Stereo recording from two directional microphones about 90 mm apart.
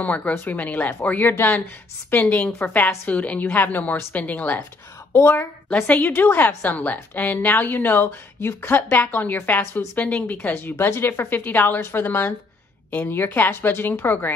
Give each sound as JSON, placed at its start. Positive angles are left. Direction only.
{"t": 0.0, "sound": "a woman's voice", "side_deg": 15}
{"t": 5.7, "sound": "a woman's voice", "side_deg": 15}